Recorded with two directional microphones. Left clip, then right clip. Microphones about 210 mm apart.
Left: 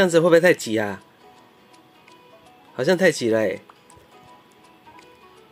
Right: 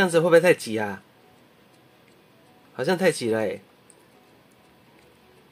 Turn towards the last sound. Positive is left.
turn(degrees=15)  # may be behind; listen again after turning